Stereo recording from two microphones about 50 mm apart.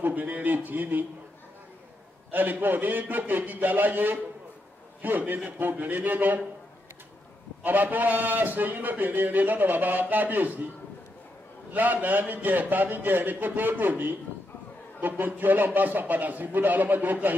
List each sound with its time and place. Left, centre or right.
0.0 s a man's voice: right
2.3 s a man's voice: right
7.6 s a man's voice: right
11.7 s a man's voice: right